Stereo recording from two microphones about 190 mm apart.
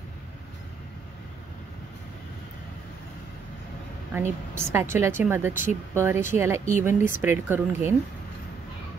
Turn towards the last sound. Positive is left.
turn(degrees=-10)  # may be behind; listen again after turning